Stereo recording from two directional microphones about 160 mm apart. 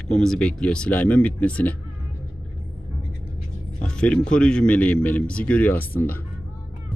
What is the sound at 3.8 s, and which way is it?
Speech, 5° left (ahead or behind).